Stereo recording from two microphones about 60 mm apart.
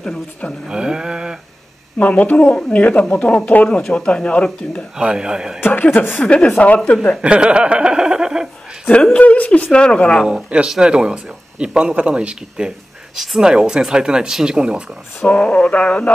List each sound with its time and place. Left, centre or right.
0.7 s speech: centre
2.0 s speech: left
4.9 s speech: centre
5.7 s speech: left
6.1 s speech: centre
7.2 s speech: centre
9.1 s speech: left
10.2 s speech: centre
15.2 s speech: centre